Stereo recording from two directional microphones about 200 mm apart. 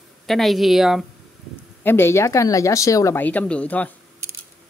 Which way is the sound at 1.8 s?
10° left (ahead or behind).